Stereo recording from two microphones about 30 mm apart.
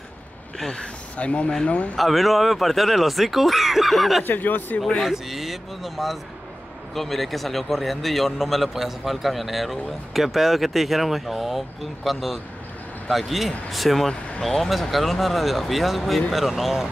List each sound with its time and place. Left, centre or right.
1.1 s speech: left
2.0 s a man's voice: centre
4.2 s speech: left
5.0 s a man's voice: centre
13.7 s a man's voice: centre